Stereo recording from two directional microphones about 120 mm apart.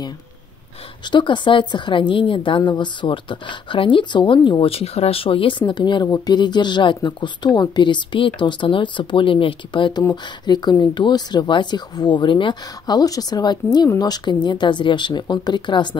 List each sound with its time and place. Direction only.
1.1 s a woman's voice: 40° left (ahead or behind)
6.0 s speech: 25° left (ahead or behind)
6.3 s speech: 40° left (ahead or behind)